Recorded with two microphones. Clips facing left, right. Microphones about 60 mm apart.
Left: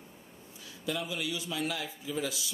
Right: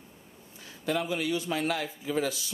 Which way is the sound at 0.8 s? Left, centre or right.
Right.